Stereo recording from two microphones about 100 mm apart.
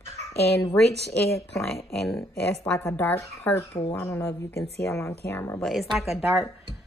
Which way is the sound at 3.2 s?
35° left (ahead or behind).